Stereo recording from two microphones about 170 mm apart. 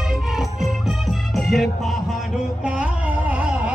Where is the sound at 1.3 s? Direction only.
Centre (ahead or behind).